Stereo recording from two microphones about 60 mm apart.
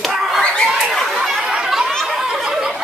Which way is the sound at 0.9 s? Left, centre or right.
Centre.